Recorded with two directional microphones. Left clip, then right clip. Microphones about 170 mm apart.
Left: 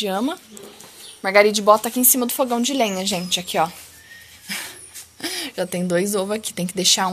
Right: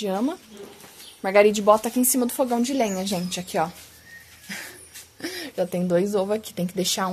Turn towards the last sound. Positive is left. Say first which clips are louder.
# left 6 dB
turn(degrees=-10)  # may be behind; listen again after turning